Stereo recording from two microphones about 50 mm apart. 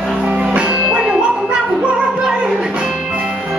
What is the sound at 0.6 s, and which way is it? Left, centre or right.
Music, right.